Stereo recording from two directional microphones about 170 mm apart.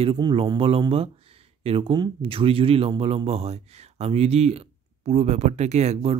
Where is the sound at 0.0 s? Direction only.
30° right (ahead or behind).